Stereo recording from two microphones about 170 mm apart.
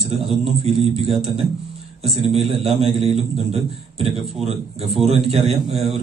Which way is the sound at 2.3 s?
35° right (ahead or behind).